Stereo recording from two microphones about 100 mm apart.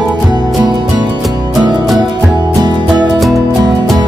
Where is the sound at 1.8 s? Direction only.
Centre (ahead or behind).